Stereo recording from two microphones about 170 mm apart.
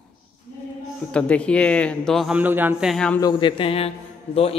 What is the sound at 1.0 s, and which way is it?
A man's voice, 5° left (ahead or behind).